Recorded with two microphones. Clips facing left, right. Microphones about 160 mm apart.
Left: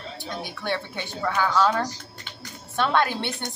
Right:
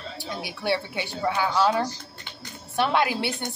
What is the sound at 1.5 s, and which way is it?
A woman's voice, 10° right (ahead or behind).